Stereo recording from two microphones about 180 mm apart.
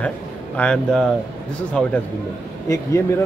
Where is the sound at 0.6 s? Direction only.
5° left (ahead or behind).